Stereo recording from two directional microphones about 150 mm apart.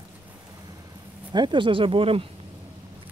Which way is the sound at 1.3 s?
30° right (ahead or behind).